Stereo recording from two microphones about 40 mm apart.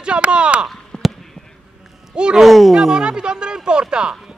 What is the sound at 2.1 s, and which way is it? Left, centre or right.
Speech, right.